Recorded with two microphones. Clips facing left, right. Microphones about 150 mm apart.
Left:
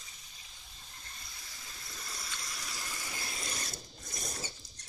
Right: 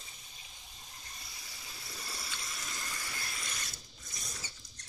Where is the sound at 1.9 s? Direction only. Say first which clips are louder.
Right 1 dB; 5° right (ahead or behind).